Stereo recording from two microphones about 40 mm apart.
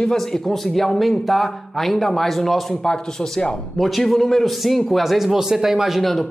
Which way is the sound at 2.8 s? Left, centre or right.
Centre.